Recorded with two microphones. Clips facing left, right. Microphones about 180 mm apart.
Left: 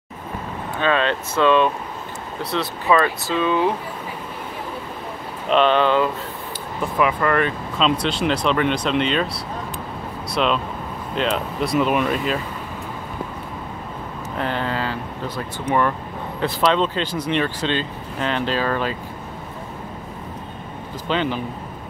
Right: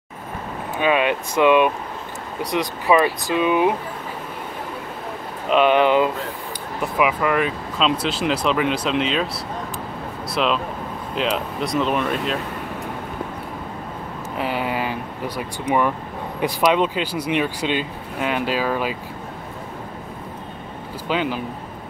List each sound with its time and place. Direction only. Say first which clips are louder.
0.7 s speech: right 1 dB; 15° right (ahead or behind)
5.5 s speech: right 1 dB; 10° right (ahead or behind)
10.3 s speech: left 1 dB; centre (ahead or behind)
14.3 s speech: even; 5° right (ahead or behind)
21.1 s speech: even; 5° right (ahead or behind)